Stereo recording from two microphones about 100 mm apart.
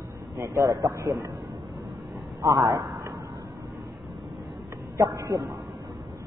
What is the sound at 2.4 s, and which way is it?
Speech, 35° right (ahead or behind).